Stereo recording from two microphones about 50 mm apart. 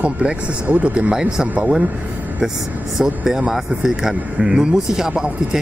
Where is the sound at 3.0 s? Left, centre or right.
Centre.